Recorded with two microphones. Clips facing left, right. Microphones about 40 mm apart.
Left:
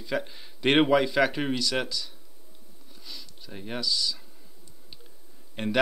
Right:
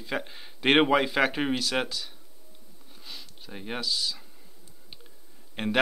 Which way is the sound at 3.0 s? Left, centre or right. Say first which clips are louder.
Even; right.